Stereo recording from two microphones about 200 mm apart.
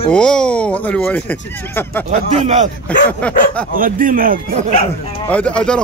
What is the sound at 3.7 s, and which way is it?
Speech, 45° right (ahead or behind).